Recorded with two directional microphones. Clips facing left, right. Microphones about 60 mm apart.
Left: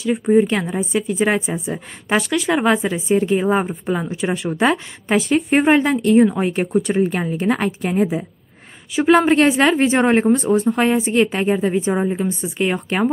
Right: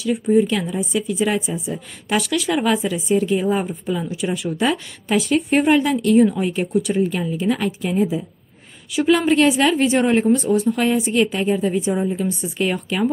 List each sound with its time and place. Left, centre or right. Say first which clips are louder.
0.0 s a woman's voice: left 2 dB; left
2.0 s a woman's voice: left 2 dB; left
6.3 s a woman's voice: left 2 dB; left
8.9 s a woman's voice: left 3 dB; left
11.9 s a woman's voice: left 2 dB; left
12.2 s speech: left 1 dB; left